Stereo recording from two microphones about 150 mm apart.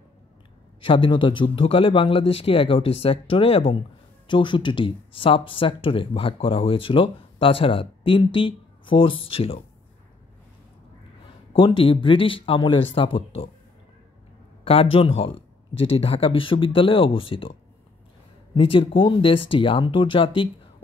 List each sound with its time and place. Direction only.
0.7 s speech: 35° left (ahead or behind)
11.5 s speech: 35° left (ahead or behind)
14.6 s speech: 40° left (ahead or behind)